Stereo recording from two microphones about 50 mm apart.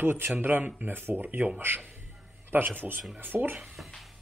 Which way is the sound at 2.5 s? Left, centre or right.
Right.